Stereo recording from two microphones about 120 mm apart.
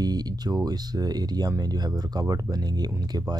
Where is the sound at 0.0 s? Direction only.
35° right (ahead or behind).